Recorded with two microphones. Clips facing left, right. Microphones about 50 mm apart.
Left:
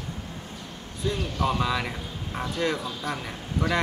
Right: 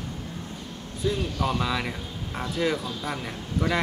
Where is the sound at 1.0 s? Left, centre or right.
Centre.